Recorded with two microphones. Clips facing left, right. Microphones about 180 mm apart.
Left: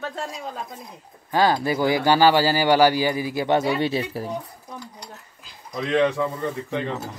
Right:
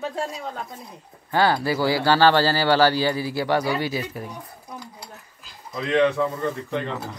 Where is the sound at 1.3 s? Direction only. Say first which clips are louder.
Left 1 dB; 20° left (ahead or behind).